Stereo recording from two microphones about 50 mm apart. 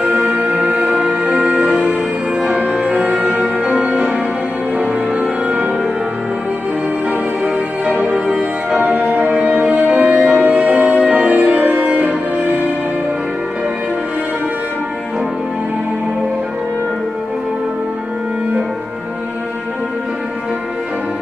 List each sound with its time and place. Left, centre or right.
0.0 s music: right
7.4 s music: centre
9.0 s music: right
9.3 s music: right